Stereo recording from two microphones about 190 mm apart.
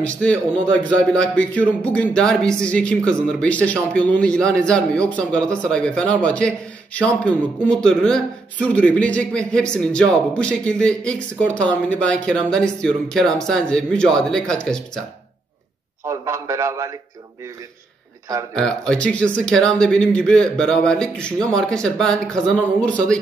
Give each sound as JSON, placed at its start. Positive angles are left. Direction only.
{"t": 0.0, "sound": "speech", "side_deg": 5}
{"t": 16.1, "sound": "a man's voice", "side_deg": -15}
{"t": 18.5, "sound": "speech", "side_deg": 5}